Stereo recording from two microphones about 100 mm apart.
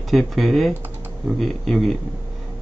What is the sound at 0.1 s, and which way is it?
Speech, centre (ahead or behind).